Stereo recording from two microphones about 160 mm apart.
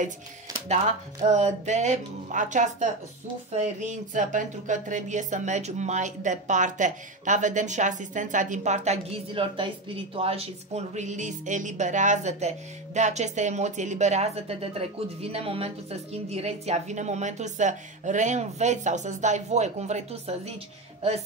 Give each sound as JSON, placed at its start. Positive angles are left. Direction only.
{"t": 1.2, "sound": "speech", "side_deg": -45}